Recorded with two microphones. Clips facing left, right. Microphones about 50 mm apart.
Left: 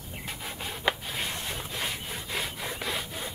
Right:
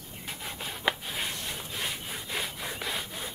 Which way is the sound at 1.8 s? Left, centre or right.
Centre.